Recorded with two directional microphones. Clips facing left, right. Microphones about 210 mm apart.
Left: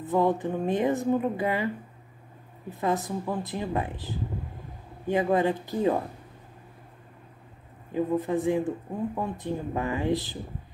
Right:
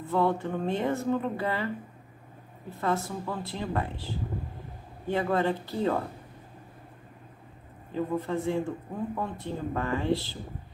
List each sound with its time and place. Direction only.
0.0 s speech: 15° left (ahead or behind)
2.8 s speech: 15° left (ahead or behind)
7.9 s speech: 15° left (ahead or behind)